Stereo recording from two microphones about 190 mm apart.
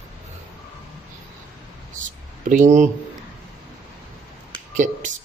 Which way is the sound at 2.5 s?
40° right (ahead or behind).